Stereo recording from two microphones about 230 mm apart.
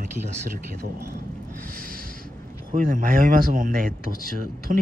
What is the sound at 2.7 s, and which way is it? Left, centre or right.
Speech, right.